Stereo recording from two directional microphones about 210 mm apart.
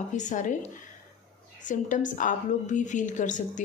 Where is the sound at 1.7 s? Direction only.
35° left (ahead or behind).